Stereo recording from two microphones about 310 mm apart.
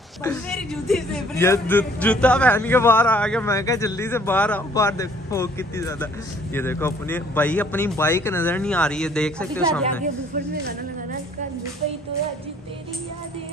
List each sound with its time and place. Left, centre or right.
0.2 s a man's voice: centre
10.0 s speech: right